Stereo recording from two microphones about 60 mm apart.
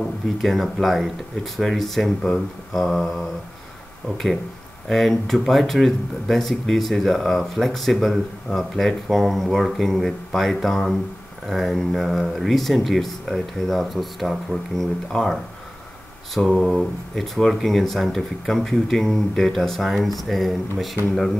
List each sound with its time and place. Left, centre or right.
0.4 s speech: centre
4.8 s speech: centre
16.3 s speech: centre